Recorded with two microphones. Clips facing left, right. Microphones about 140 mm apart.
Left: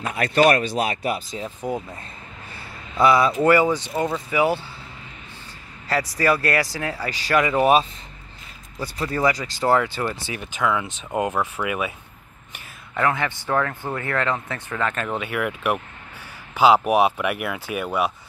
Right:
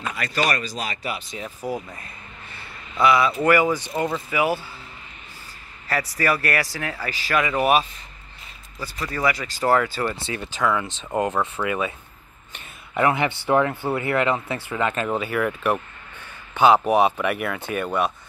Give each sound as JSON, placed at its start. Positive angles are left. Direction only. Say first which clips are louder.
{"t": 0.1, "sound": "speech", "louder": "left 9 dB", "side_deg": 55}
{"t": 1.3, "sound": "speech", "louder": "left 2 dB", "side_deg": 25}
{"t": 3.0, "sound": "speech", "louder": "left 1 dB", "side_deg": 40}
{"t": 3.7, "sound": "speech", "louder": "left 1 dB", "side_deg": 20}
{"t": 5.9, "sound": "speech", "louder": "left 2 dB", "side_deg": 25}
{"t": 8.9, "sound": "speech", "louder": "left 3 dB", "side_deg": 30}
{"t": 9.7, "sound": "speech", "louder": "even", "side_deg": 15}
{"t": 10.6, "sound": "speech", "louder": "even", "side_deg": 5}
{"t": 12.9, "sound": "speech", "louder": "right 2 dB", "side_deg": -15}
{"t": 15.0, "sound": "speech", "louder": "right 2 dB", "side_deg": 0}